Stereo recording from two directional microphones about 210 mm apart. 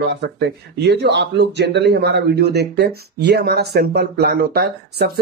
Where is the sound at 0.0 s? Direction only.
55° right (ahead or behind).